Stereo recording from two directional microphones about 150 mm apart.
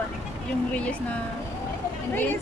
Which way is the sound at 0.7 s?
10° left (ahead or behind).